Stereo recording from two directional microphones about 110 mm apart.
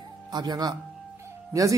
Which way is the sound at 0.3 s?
40° right (ahead or behind).